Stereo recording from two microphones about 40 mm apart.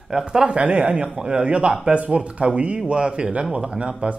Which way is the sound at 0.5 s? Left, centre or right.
Right.